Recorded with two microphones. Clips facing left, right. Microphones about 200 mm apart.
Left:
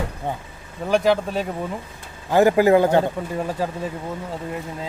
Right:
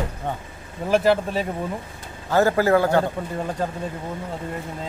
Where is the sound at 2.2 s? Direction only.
15° left (ahead or behind).